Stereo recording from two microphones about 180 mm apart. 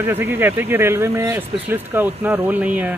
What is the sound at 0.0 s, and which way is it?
Speech, 10° right (ahead or behind).